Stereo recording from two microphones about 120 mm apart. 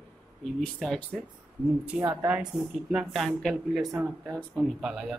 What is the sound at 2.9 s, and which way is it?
Speech, centre (ahead or behind).